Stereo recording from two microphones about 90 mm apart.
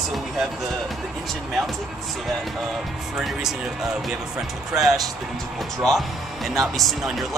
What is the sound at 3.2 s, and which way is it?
Speech, 5° right (ahead or behind).